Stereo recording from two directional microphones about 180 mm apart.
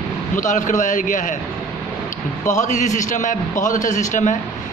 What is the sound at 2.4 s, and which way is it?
A man's voice, 45° left (ahead or behind).